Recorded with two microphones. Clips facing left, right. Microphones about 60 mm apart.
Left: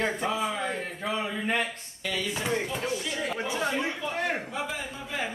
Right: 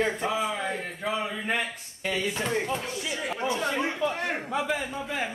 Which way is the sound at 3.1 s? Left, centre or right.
Centre.